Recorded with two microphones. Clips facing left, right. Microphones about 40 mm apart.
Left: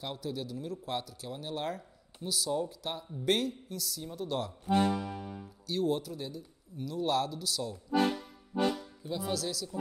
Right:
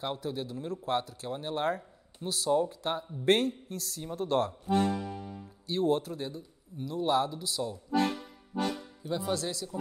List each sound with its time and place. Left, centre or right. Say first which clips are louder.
0.0 s speech: right 3 dB; right
4.6 s music: even; centre
5.7 s a man's voice: right 3 dB; right
7.9 s speech: left 1 dB; centre
9.1 s a man's voice: right 2 dB; right